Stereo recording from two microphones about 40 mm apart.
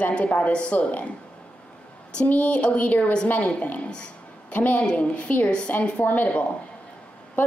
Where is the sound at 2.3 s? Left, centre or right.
Left.